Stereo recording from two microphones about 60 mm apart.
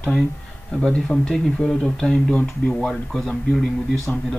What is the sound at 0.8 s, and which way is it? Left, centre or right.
Speech, centre.